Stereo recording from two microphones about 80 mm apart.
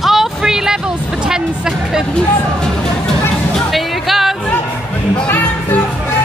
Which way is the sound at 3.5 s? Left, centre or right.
Centre.